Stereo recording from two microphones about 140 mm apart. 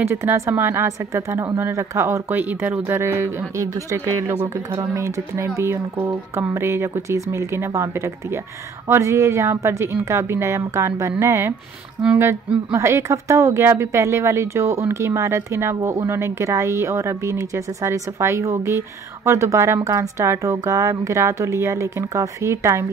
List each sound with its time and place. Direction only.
0.0 s a woman's voice: 20° right (ahead or behind)